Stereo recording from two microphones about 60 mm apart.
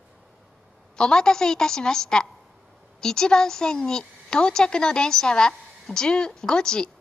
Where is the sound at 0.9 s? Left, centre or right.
Centre.